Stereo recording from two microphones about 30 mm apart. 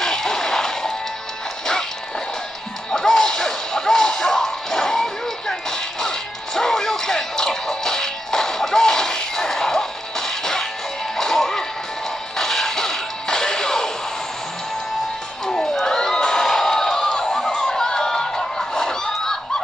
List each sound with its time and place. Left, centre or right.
0.0 s music: centre
2.9 s music: centre
15.4 s crowd: centre
16.2 s music: left
17.5 s a sound: centre